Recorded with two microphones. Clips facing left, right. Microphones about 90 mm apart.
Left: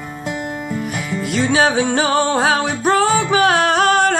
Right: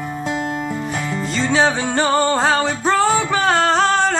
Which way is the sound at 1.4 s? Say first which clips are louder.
Left 2 dB; 5° left (ahead or behind).